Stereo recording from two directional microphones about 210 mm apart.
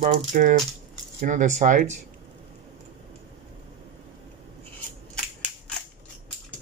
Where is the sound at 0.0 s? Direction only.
35° right (ahead or behind).